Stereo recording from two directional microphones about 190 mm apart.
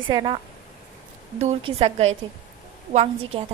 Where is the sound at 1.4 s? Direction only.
30° right (ahead or behind).